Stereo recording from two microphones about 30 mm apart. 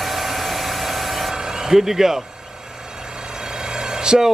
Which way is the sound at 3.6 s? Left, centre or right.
Right.